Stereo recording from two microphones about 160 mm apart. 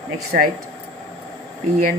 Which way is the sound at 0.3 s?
60° right (ahead or behind).